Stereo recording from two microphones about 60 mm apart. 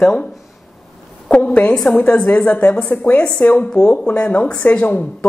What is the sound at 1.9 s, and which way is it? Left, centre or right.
Speech, left.